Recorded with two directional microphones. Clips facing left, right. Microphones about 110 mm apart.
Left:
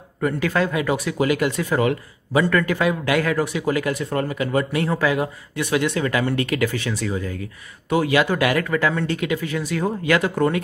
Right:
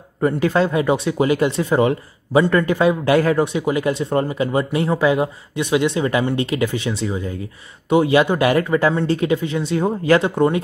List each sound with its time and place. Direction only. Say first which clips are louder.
0.2 s speech: right 4 dB; 30° right (ahead or behind)